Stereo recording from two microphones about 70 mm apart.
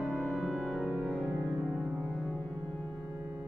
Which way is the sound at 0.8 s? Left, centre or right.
Right.